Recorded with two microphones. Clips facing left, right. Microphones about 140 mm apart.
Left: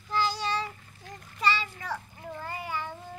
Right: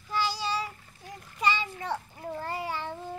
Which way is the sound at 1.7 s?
25° right (ahead or behind).